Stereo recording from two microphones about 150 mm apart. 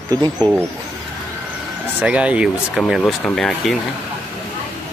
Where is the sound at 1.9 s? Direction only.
10° right (ahead or behind).